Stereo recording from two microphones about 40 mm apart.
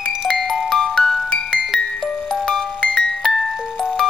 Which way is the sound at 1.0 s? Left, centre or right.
Centre.